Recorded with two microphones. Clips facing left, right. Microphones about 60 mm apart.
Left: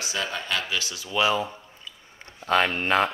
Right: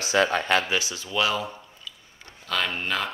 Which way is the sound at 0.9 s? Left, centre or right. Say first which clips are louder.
Left 6 dB; centre.